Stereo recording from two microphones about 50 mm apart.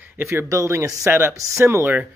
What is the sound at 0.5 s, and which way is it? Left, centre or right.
Speech, right.